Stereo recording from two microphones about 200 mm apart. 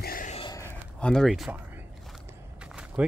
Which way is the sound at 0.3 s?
25° left (ahead or behind).